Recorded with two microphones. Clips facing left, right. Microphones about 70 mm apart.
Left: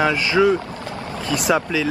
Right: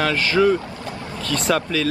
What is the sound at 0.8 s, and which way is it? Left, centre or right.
Vehicle, left.